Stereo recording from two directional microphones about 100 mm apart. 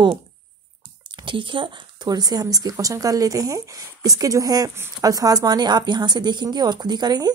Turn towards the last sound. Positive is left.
turn(degrees=-45)  # may be behind; listen again after turning